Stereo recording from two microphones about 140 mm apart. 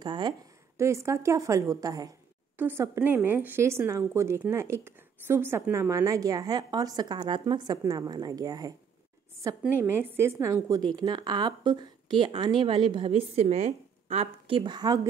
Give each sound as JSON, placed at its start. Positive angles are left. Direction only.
{"t": 0.0, "sound": "a woman's voice", "side_deg": -30}
{"t": 0.7, "sound": "a woman's voice", "side_deg": -20}
{"t": 2.5, "sound": "a woman's voice", "side_deg": -15}